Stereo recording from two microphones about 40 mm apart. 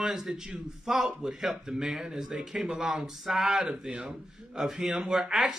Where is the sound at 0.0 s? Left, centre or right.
Centre.